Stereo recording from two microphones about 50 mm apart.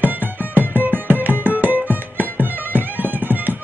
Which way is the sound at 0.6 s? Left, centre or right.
Right.